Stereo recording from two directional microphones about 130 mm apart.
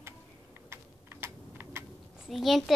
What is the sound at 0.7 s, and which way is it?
Typing, 20° right (ahead or behind).